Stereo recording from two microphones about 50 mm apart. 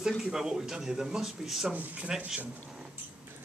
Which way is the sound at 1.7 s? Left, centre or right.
Right.